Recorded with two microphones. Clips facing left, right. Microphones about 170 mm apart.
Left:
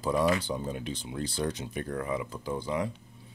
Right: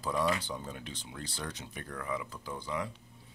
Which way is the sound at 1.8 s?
25° left (ahead or behind).